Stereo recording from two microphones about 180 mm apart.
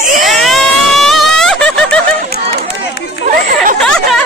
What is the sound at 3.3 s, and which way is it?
Speech, 50° right (ahead or behind).